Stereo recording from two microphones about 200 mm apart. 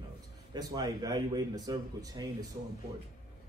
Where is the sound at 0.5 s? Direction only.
20° right (ahead or behind).